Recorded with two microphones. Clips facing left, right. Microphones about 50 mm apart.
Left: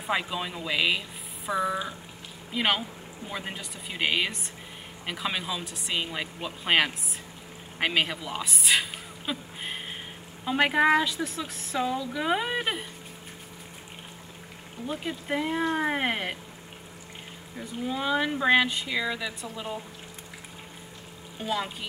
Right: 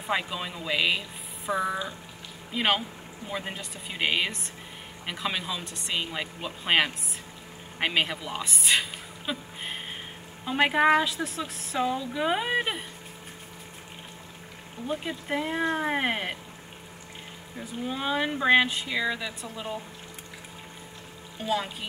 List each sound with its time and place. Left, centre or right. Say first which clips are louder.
0.0 s speech: even; centre
1.5 s speech: even; centre
2.5 s speech: right 1 dB; centre
14.9 s speech: even; centre
17.6 s speech: left 1 dB; centre